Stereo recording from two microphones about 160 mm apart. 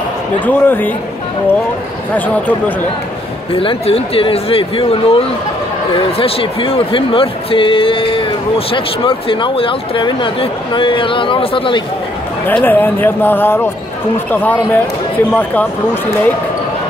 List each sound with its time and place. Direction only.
0.5 s speech: 10° left (ahead or behind)
2.1 s speech: 10° left (ahead or behind)
3.5 s speech: 35° left (ahead or behind)
12.4 s speech: 10° left (ahead or behind)